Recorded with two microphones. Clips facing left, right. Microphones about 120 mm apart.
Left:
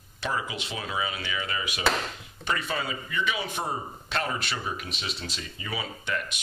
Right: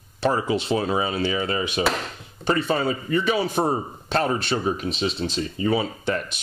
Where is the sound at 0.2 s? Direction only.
35° right (ahead or behind).